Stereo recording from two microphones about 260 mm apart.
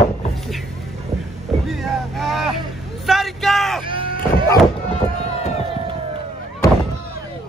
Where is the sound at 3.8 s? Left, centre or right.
Centre.